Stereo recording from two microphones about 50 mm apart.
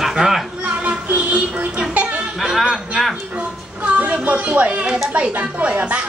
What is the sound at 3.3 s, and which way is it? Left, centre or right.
Music, right.